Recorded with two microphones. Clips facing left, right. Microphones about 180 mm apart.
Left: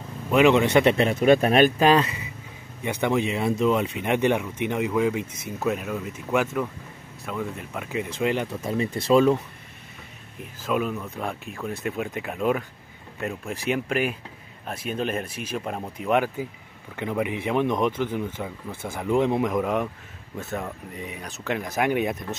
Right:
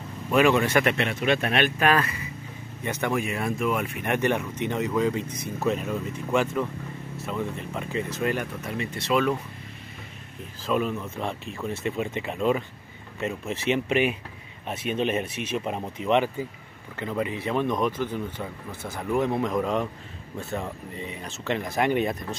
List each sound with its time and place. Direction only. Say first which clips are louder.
0.3 s speech: left 3 dB; 15° left (ahead or behind)
0.9 s speech: left 6 dB; 40° left (ahead or behind)
10.7 s speech: even; centre (ahead or behind); by 17.9 s 20° left (ahead or behind)
18.7 s speech: left 2 dB; 50° left (ahead or behind)
18.9 s speech: left 3 dB; 20° left (ahead or behind)